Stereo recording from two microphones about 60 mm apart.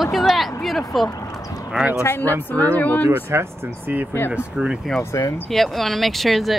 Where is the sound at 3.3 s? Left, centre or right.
Right.